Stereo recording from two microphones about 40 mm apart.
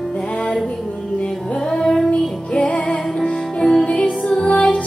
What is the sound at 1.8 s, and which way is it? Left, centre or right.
Child singing, centre.